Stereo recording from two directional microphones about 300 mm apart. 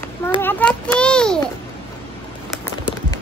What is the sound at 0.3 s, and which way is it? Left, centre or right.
Children playing, centre.